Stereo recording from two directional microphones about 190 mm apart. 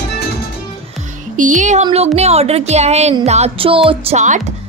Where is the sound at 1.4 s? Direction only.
40° right (ahead or behind).